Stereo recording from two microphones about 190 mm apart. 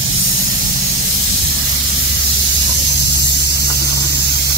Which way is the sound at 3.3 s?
60° left (ahead or behind).